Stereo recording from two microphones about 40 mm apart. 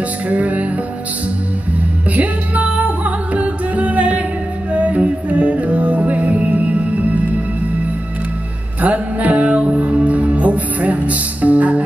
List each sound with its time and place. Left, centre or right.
0.3 s music: right
2.1 s music: right
8.8 s music: right